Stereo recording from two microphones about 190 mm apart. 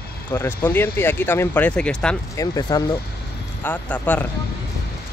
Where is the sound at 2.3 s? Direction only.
20° left (ahead or behind).